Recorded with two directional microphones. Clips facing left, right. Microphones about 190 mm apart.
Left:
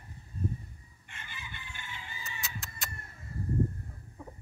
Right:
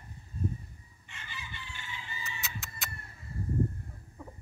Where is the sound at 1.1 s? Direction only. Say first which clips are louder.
Right 1 dB; 50° left (ahead or behind).